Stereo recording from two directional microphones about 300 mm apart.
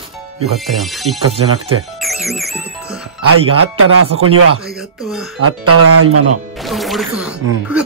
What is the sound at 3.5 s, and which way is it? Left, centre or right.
Speech, right.